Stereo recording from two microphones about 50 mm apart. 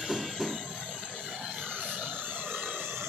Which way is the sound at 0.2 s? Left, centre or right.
Centre.